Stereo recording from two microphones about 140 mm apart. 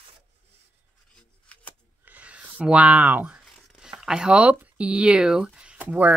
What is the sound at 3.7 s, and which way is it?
Speech, 5° right (ahead or behind).